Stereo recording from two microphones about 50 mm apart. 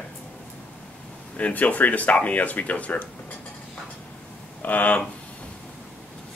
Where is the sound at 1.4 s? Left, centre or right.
Left.